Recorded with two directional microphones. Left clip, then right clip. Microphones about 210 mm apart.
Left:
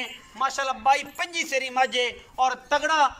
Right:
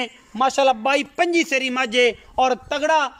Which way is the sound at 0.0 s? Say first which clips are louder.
Right 6 dB; 55° right (ahead or behind).